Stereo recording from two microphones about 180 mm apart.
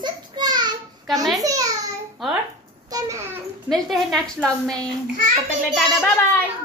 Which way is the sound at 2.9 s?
15° right (ahead or behind).